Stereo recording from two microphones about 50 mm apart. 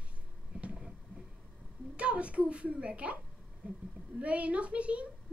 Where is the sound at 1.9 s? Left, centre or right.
Right.